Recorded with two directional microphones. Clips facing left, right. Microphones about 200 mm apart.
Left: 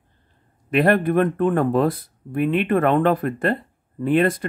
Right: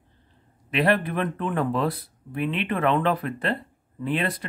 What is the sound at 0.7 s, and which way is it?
Speech, 50° left (ahead or behind).